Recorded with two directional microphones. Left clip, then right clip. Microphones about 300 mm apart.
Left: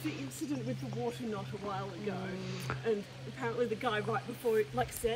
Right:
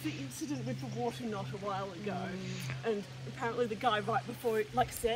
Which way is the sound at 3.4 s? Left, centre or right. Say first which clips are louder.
Right 1 dB; centre.